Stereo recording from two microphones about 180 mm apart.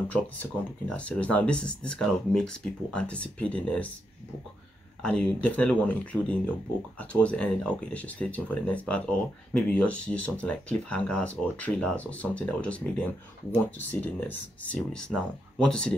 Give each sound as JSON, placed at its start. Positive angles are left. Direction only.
{"t": 0.1, "sound": "speech", "side_deg": 5}
{"t": 5.0, "sound": "speech", "side_deg": 5}